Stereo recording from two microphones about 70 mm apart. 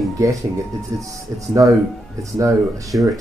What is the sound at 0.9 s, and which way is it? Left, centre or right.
Speech, right.